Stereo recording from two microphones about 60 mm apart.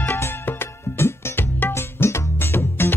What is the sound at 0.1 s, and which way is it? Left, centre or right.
Music, left.